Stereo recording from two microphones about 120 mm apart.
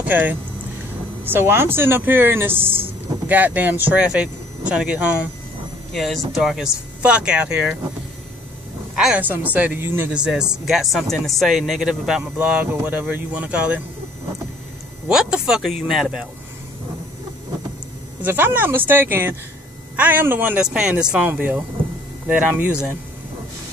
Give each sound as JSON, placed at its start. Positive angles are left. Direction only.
{"t": 0.0, "sound": "speech", "side_deg": -15}
{"t": 5.9, "sound": "speech", "side_deg": 0}
{"t": 8.9, "sound": "speech", "side_deg": -5}
{"t": 15.0, "sound": "speech", "side_deg": -5}
{"t": 18.2, "sound": "speech", "side_deg": -15}